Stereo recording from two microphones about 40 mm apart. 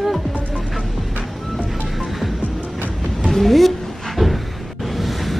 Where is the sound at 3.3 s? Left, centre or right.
Centre.